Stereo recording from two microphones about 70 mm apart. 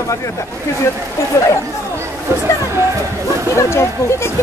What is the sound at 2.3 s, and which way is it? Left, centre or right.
Speech, right.